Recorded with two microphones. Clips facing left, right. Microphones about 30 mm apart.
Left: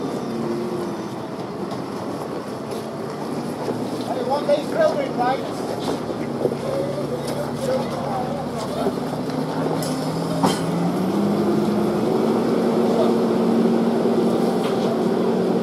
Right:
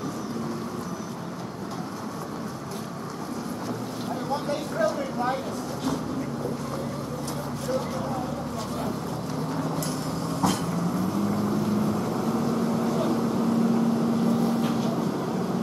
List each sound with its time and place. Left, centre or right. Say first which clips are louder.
4.3 s speech: left 10 dB; left
9.6 s vehicle: left 6 dB; left